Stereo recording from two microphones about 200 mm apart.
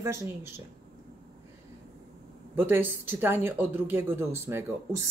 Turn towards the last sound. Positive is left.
turn(degrees=-15)  # may be behind; listen again after turning